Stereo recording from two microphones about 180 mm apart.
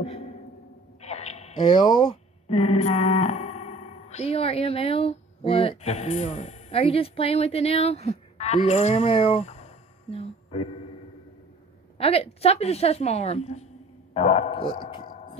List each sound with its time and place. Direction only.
0.0 s a sound: 35° left (ahead or behind)
1.0 s speech: 35° left (ahead or behind)
12.0 s a woman's voice: 35° left (ahead or behind)